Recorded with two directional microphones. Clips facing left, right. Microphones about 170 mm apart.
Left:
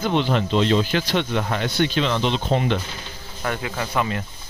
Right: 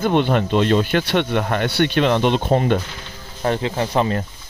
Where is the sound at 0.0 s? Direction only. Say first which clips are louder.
Right 4 dB; 55° right (ahead or behind).